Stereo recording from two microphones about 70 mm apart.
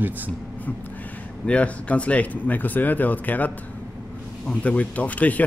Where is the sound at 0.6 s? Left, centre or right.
Left.